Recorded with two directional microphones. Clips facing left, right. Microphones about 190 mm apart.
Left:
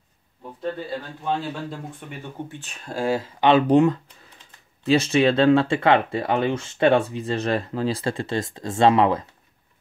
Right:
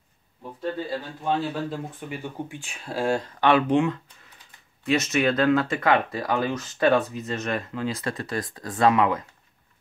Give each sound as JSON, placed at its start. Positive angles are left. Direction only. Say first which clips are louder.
{"t": 1.2, "sound": "speech", "louder": "right 2 dB", "side_deg": -5}
{"t": 3.3, "sound": "speech", "louder": "left 3 dB", "side_deg": 20}
{"t": 3.6, "sound": "speech", "louder": "left 5 dB", "side_deg": 35}